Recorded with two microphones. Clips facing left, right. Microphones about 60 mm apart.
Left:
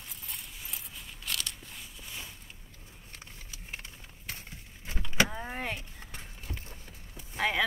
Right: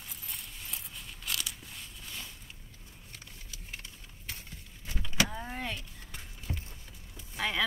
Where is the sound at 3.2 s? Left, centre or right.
Left.